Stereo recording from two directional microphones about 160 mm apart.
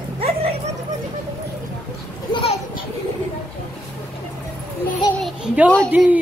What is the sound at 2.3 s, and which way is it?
Children playing, 35° left (ahead or behind).